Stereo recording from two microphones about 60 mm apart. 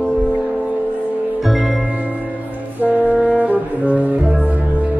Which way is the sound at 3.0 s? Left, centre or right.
Right.